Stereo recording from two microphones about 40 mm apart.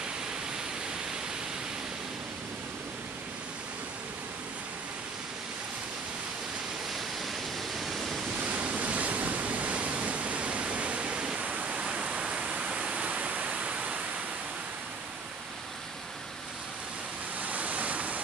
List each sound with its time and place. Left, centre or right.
7.7 s waterfall: centre
8.4 s waves: right
11.3 s pink noise: right
17.4 s waves: right